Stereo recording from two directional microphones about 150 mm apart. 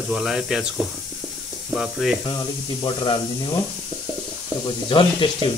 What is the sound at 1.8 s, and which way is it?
Speech, 5° right (ahead or behind).